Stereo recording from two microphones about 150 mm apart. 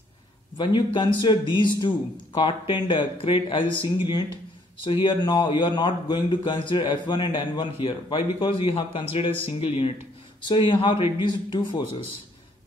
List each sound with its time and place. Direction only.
0.6 s a man's voice: 30° left (ahead or behind)